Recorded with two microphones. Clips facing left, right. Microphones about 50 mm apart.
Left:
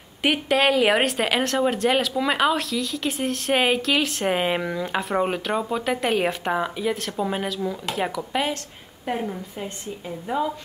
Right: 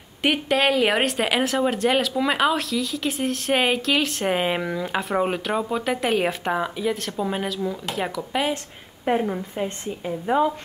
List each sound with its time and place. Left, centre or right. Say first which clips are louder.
0.2 s speech: even; centre
9.0 s a woman's voice: right 5 dB; right